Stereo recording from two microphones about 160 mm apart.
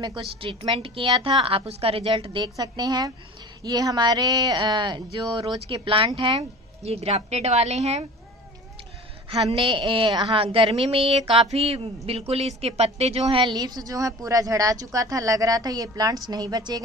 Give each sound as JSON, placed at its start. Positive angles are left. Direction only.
{"t": 0.4, "sound": "a woman's voice", "side_deg": -35}
{"t": 9.3, "sound": "a woman's voice", "side_deg": -35}